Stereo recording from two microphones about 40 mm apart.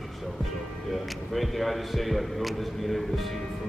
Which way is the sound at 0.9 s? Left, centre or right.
Centre.